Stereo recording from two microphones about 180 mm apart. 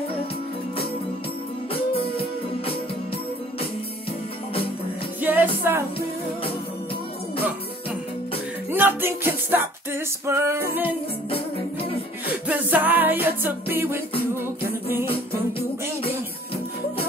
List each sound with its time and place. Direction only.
1.7 s music: 30° left (ahead or behind)
5.2 s music: 10° right (ahead or behind)
8.6 s music: 10° right (ahead or behind)
11.2 s music: 30° left (ahead or behind)
12.4 s music: 10° right (ahead or behind)
14.4 s a capella: 15° right (ahead or behind)